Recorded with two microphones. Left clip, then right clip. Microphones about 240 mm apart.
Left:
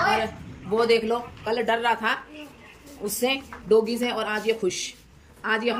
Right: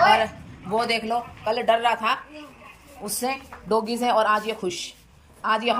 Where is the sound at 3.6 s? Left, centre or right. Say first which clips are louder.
Left 1 dB; centre.